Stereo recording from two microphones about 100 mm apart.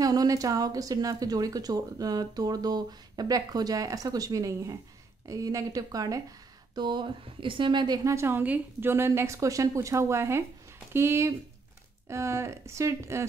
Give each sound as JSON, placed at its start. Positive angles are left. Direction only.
{"t": 0.0, "sound": "speech", "side_deg": -40}
{"t": 6.7, "sound": "speech", "side_deg": -45}
{"t": 8.0, "sound": "a woman's voice", "side_deg": -30}